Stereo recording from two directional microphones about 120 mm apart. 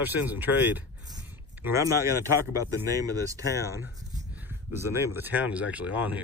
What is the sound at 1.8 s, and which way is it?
Speech, 25° right (ahead or behind).